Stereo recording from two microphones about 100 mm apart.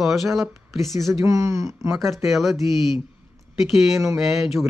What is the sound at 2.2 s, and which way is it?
Speech, centre (ahead or behind).